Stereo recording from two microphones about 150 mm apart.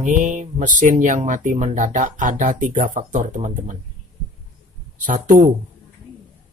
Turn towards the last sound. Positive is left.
turn(degrees=-60)  # may be behind; listen again after turning